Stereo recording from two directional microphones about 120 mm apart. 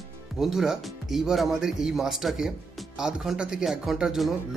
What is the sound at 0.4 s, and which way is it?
Speech, 5° right (ahead or behind).